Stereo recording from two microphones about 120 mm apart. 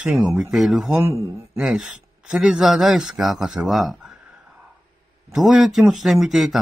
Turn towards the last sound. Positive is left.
turn(degrees=0)  # may be behind; listen again after turning